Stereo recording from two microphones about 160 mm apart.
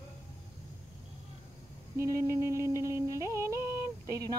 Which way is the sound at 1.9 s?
15° right (ahead or behind).